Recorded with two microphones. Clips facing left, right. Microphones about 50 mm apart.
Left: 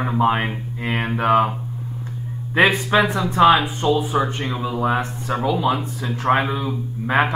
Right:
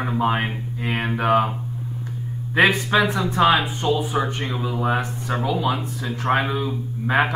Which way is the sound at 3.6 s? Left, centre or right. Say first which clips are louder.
Left 2 dB; centre.